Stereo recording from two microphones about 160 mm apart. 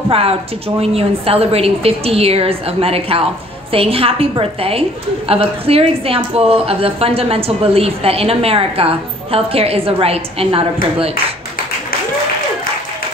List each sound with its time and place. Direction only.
0.1 s a woman's voice: 35° right (ahead or behind)